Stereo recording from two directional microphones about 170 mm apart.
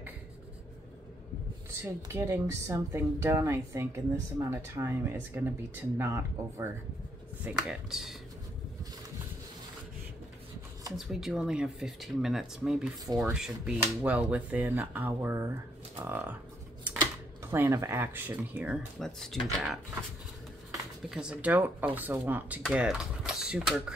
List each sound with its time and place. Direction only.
1.8 s speech: 15° right (ahead or behind)
7.4 s speech: 5° right (ahead or behind)
11.0 s speech: centre (ahead or behind)
21.1 s speech: 5° right (ahead or behind)